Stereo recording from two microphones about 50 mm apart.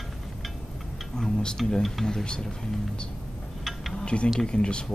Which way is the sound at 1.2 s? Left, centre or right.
Centre.